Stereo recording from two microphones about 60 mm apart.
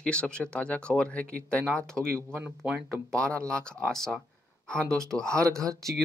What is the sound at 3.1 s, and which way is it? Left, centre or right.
Speech, centre.